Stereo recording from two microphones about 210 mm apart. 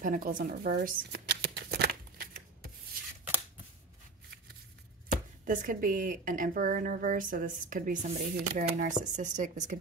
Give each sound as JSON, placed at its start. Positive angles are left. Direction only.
{"t": 0.0, "sound": "shuffling cards", "side_deg": -40}
{"t": 5.5, "sound": "speech", "side_deg": -40}